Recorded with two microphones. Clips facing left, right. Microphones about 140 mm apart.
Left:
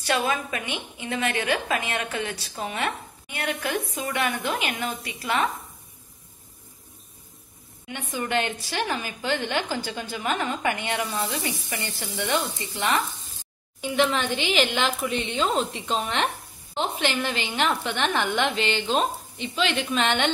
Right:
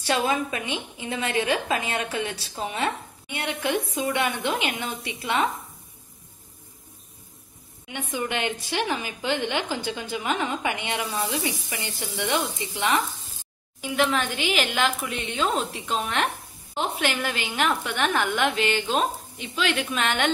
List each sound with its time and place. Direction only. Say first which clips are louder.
0.0 s a woman's voice: right 1 dB; 25° right (ahead or behind)
7.9 s a woman's voice: left 2 dB; 15° right (ahead or behind)